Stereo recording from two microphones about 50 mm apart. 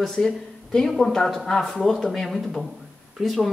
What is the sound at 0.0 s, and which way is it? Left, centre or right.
Speech, centre.